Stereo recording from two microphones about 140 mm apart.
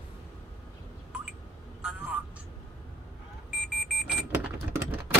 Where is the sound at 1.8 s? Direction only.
10° right (ahead or behind).